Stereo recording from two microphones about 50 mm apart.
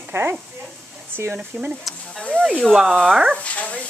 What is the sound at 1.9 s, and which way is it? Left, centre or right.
Speech, centre.